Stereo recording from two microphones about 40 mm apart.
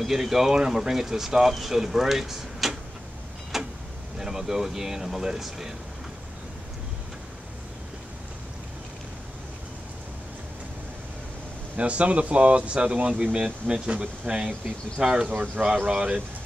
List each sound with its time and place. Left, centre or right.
0.0 s speech: centre
3.5 s vehicle: centre
4.2 s speech: centre
11.7 s speech: right
14.4 s speech: centre
15.2 s speech: right